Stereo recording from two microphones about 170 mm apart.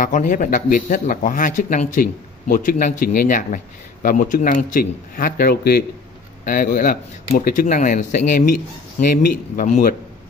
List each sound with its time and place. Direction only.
0.0 s speech: 50° left (ahead or behind); by 5.9 s 70° left (ahead or behind)
6.4 s speech: 55° left (ahead or behind)